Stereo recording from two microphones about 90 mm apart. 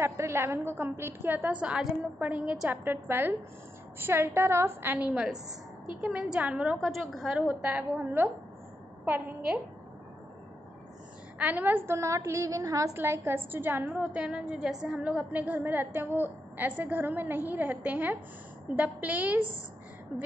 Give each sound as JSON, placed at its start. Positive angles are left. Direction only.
{"t": 0.0, "sound": "a woman's voice", "side_deg": -30}
{"t": 6.8, "sound": "a woman's voice", "side_deg": 0}
{"t": 7.3, "sound": "a woman's voice", "side_deg": -15}
{"t": 11.3, "sound": "a woman's voice", "side_deg": -20}
{"t": 12.9, "sound": "a woman's voice", "side_deg": -25}